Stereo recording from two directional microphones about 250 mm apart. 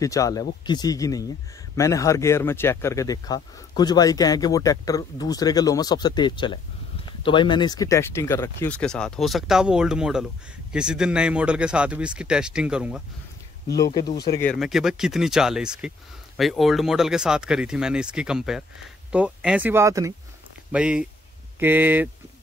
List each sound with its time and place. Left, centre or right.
0.0 s speech: centre
13.7 s speech: centre
14.0 s speech: left
14.3 s speech: centre